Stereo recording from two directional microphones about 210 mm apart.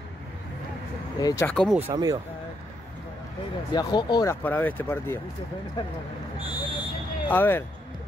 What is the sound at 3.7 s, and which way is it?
Speech, 20° left (ahead or behind).